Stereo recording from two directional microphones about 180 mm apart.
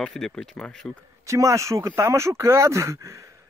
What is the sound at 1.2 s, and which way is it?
Speech, 15° right (ahead or behind).